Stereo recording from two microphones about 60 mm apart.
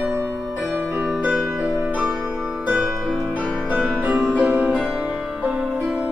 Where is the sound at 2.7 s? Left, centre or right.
Centre.